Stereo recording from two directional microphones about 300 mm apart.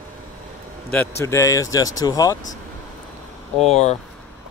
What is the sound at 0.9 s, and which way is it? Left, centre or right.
Speech, centre.